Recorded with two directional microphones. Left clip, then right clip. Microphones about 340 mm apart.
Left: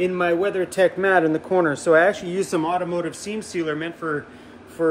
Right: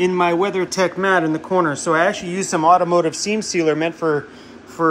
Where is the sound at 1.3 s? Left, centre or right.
Right.